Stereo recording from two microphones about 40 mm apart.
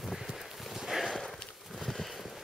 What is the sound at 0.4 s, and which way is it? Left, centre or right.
Clip-clop, centre.